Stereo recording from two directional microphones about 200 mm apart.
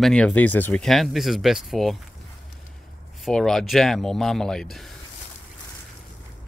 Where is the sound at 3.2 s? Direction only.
Centre (ahead or behind).